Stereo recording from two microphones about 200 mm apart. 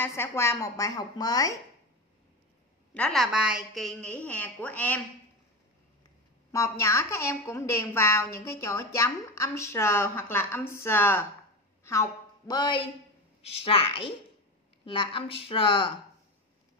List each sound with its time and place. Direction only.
0.0 s a woman's voice: 15° left (ahead or behind)
2.9 s a woman's voice: 5° left (ahead or behind)
6.5 s a woman's voice: 15° left (ahead or behind)